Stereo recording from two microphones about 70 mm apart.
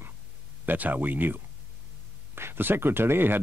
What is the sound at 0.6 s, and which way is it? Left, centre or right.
Speech, right.